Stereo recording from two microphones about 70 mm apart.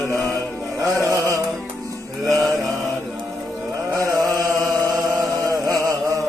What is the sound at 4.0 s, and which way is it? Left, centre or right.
Chant, right.